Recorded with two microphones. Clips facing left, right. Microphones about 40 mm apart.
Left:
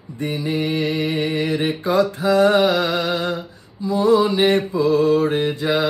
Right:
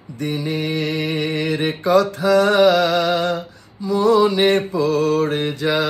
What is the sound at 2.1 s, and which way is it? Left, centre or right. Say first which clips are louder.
Mantra: right 2 dB; left.